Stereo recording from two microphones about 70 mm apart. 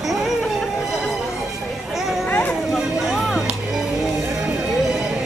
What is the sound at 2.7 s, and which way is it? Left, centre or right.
Music, centre.